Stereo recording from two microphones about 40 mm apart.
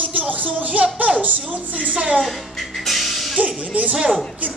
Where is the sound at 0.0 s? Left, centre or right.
Right.